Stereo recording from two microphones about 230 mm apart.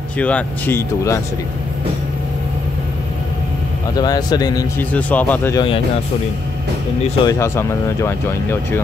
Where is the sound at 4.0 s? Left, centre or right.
Centre.